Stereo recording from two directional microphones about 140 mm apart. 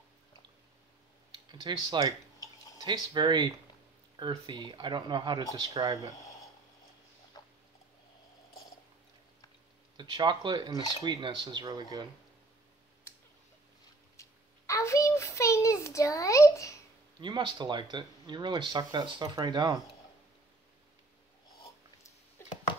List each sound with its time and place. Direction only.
1.5 s speech: 30° right (ahead or behind)
7.3 s rodents: 30° left (ahead or behind)
9.9 s speech: 35° right (ahead or behind)
14.7 s a sound: 20° left (ahead or behind)
17.2 s speech: 35° right (ahead or behind)